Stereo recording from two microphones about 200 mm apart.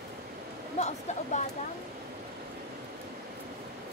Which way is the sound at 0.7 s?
35° left (ahead or behind).